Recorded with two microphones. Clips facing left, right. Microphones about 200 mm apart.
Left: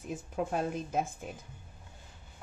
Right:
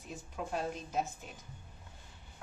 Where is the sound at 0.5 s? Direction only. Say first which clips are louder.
Left 2 dB; 50° left (ahead or behind).